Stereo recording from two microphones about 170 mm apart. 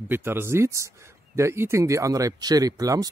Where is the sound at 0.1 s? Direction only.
10° right (ahead or behind).